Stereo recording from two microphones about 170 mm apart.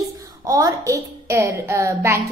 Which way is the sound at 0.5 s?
20° right (ahead or behind).